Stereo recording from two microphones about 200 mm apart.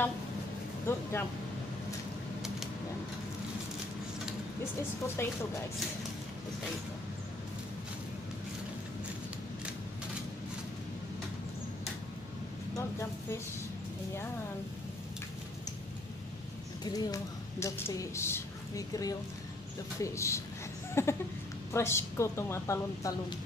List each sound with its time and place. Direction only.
0.9 s a woman's voice: 10° left (ahead or behind)
5.0 s a woman's voice: 10° left (ahead or behind)
16.8 s a woman's voice: 20° left (ahead or behind)
20.9 s a sound: 15° left (ahead or behind)
21.7 s a woman's voice: 15° left (ahead or behind)